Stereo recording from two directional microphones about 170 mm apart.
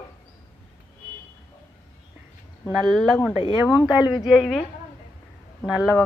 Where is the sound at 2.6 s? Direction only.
10° right (ahead or behind).